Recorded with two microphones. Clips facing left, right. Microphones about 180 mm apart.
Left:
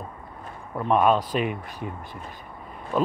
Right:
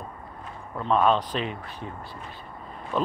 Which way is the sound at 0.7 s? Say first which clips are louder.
Left 2 dB; 15° left (ahead or behind).